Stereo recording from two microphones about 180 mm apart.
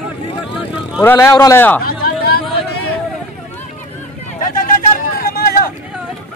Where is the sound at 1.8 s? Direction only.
55° left (ahead or behind).